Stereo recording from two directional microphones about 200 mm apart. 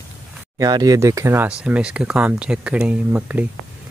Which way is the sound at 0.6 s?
20° right (ahead or behind).